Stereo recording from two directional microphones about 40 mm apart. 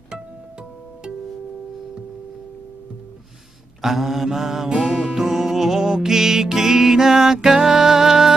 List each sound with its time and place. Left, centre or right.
3.8 s music: centre